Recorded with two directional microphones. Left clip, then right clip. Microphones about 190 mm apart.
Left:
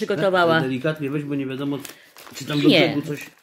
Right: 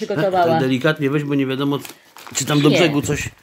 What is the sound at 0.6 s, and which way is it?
Speech, 40° right (ahead or behind).